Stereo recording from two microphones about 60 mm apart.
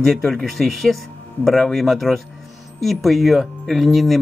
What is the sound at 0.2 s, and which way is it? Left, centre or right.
Speech, centre.